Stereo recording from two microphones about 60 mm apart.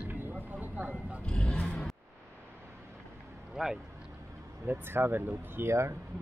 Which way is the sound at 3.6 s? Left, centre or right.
Centre.